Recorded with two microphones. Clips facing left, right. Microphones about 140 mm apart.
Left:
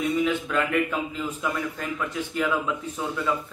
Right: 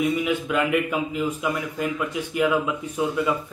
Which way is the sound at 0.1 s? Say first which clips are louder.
Right 1 dB; 10° right (ahead or behind).